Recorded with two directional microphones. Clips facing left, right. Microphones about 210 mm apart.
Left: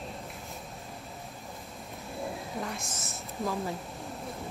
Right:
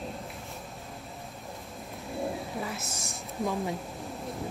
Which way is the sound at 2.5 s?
5° right (ahead or behind).